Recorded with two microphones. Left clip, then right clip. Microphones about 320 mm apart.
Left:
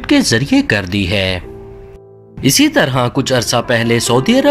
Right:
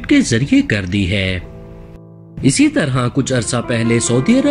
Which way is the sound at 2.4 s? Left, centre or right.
Centre.